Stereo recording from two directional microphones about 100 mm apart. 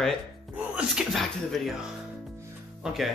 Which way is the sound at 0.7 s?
Centre (ahead or behind).